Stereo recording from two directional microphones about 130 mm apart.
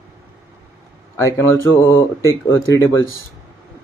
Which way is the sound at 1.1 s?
20° left (ahead or behind).